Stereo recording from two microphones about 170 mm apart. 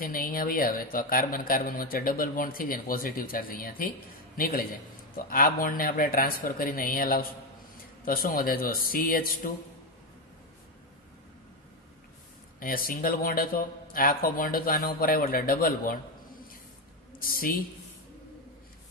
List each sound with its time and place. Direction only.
0.0 s speech: 55° left (ahead or behind)
12.5 s speech: 55° left (ahead or behind)
17.2 s a woman's voice: 60° left (ahead or behind)